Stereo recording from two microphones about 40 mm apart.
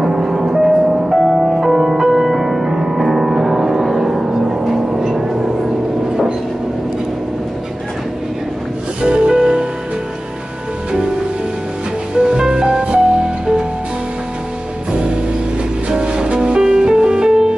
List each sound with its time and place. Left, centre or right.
0.0 s music: centre
9.0 s music: right
12.2 s music: centre
14.9 s music: right